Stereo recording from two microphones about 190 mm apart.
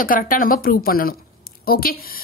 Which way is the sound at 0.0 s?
45° left (ahead or behind).